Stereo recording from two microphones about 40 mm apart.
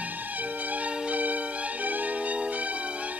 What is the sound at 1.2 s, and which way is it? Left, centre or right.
Music, right.